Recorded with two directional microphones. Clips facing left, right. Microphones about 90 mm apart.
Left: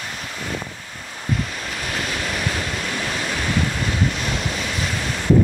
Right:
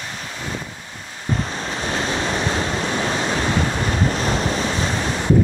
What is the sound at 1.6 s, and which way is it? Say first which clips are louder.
Waves: right 3 dB; 30° right (ahead or behind).